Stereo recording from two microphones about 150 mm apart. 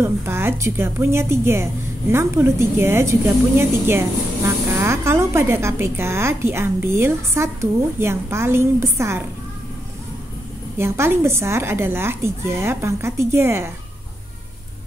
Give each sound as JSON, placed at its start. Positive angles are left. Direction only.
{"t": 0.0, "sound": "a woman's voice", "side_deg": -15}
{"t": 10.8, "sound": "a woman's voice", "side_deg": -15}